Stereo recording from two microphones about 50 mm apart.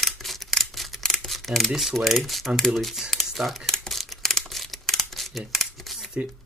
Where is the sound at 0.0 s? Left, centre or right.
Centre.